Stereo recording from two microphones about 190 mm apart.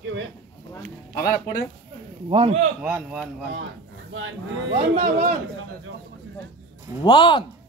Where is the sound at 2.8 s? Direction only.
5° right (ahead or behind).